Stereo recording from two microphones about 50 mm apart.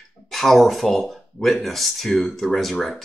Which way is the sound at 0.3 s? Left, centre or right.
Centre.